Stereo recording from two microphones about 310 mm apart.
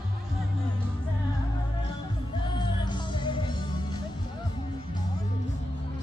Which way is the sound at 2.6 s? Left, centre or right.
Centre.